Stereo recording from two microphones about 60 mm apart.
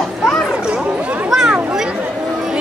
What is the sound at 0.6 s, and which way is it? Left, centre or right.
Speech, centre.